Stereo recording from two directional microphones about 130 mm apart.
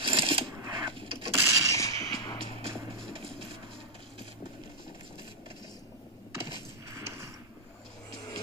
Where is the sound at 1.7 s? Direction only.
25° left (ahead or behind).